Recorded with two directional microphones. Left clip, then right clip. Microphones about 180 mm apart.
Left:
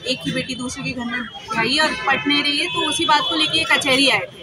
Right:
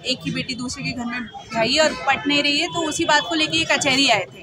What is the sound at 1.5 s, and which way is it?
Speech, 35° right (ahead or behind).